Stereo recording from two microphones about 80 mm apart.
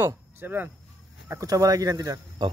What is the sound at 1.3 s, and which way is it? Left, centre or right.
Speech, right.